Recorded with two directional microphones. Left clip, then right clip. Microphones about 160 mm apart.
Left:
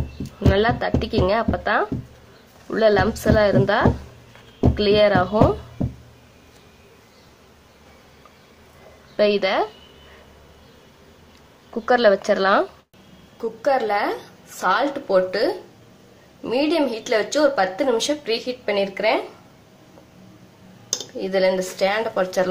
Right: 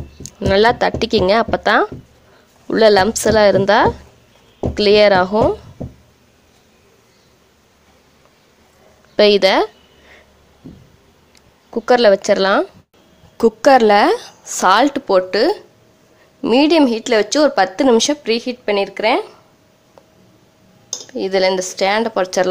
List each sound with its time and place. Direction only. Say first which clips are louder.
0.2 s speech: right 7 dB; 50° right (ahead or behind)
9.1 s speech: right 7 dB; 50° right (ahead or behind)
11.7 s a woman's voice: right 5 dB; 35° right (ahead or behind)
13.4 s speech: right 10 dB; 65° right (ahead or behind)
21.1 s speech: right 4 dB; 50° right (ahead or behind)